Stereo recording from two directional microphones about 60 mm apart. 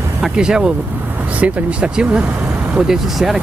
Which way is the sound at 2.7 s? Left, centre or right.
Centre.